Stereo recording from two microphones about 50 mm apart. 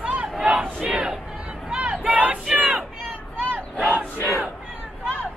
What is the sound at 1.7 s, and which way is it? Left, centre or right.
Crowd, right.